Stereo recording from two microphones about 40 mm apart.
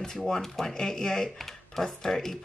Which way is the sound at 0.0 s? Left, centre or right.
Centre.